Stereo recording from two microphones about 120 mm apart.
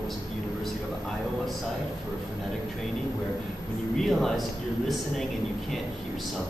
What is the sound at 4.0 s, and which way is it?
Speech, centre (ahead or behind).